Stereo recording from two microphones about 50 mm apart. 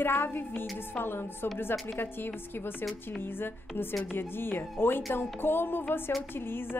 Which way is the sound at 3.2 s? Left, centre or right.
Left.